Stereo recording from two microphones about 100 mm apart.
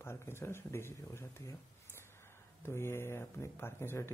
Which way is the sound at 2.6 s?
25° left (ahead or behind).